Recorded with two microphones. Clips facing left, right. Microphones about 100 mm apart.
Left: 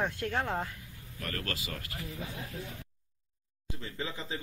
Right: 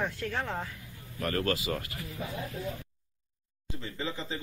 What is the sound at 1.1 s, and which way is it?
Speech, 20° right (ahead or behind).